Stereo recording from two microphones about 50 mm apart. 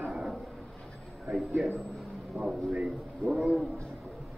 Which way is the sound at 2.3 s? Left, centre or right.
Centre.